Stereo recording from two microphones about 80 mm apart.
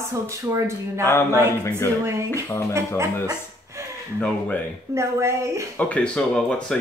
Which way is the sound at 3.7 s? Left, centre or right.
Right.